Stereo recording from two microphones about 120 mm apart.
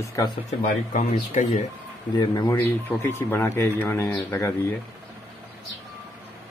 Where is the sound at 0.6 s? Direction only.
90° left.